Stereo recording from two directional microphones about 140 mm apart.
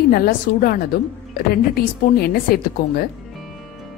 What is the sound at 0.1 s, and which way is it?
A woman's voice, 90° left.